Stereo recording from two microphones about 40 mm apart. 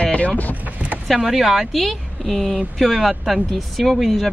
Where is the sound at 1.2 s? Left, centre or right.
Centre.